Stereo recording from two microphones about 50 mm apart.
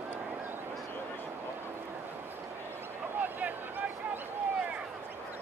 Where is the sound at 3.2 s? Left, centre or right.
Right.